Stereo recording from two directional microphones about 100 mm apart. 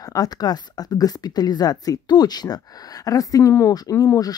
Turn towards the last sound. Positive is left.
turn(degrees=40)  # may be behind; listen again after turning